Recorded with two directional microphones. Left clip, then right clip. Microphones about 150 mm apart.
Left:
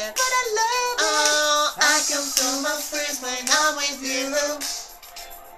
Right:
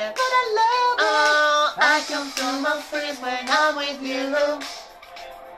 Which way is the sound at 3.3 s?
25° left (ahead or behind).